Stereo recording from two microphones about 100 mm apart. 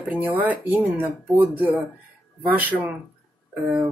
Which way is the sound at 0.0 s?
15° right (ahead or behind).